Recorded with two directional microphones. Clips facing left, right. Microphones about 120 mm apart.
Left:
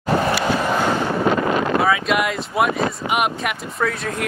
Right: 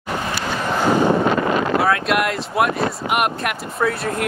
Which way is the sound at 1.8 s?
Centre (ahead or behind).